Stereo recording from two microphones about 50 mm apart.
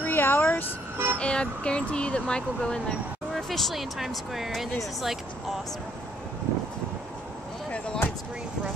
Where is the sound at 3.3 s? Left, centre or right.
Centre.